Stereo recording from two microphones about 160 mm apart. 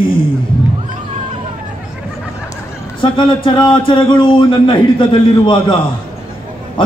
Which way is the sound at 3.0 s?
30° left (ahead or behind).